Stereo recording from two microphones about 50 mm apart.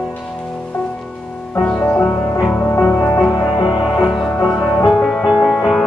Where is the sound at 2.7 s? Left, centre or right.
Left.